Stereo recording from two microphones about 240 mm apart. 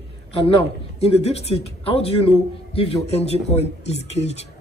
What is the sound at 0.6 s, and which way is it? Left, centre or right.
Speech, left.